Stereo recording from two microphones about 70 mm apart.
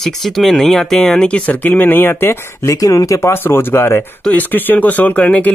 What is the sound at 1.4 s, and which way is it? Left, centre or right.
Speech, left.